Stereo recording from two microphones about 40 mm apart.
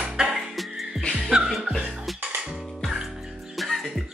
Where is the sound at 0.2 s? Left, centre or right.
Right.